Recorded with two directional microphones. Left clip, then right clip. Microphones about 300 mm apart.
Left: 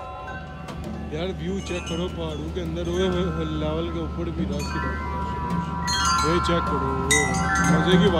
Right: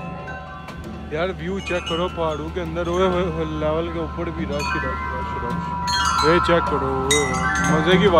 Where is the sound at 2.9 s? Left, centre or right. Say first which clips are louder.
Right 5 dB; centre.